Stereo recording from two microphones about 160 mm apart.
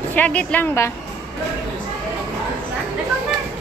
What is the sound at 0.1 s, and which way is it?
Speech, 10° left (ahead or behind).